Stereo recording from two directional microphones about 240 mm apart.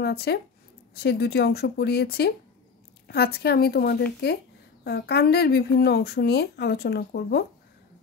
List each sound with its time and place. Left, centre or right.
0.0 s a woman's voice: left